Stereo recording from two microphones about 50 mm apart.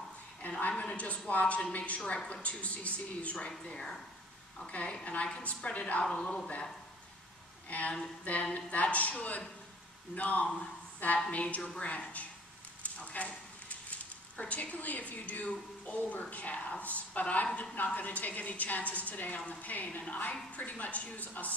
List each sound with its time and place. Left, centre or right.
0.6 s a woman's voice: left
6.1 s speech: centre
7.7 s a woman's voice: left
12.8 s a sound: left
14.5 s a woman's voice: left